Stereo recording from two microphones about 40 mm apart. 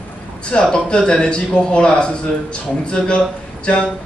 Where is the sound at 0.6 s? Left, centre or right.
Left.